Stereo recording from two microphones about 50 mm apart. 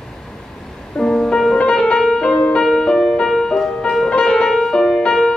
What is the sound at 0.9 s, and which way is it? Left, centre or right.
Music, centre.